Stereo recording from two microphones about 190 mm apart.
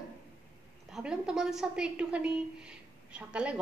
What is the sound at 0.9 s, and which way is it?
A woman's voice, 5° right (ahead or behind).